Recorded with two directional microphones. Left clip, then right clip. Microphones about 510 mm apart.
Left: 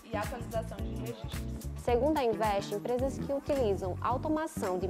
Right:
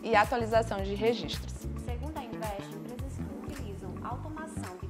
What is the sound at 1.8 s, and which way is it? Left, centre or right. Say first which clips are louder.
Speech: left 15 dB; centre.